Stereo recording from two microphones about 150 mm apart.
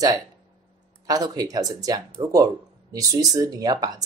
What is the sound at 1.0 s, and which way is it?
Speech, 25° right (ahead or behind).